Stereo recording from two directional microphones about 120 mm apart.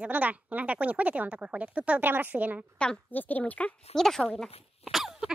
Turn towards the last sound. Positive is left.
turn(degrees=-5)  # may be behind; listen again after turning